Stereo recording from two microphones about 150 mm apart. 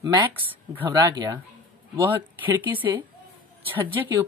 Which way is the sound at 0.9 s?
25° right (ahead or behind).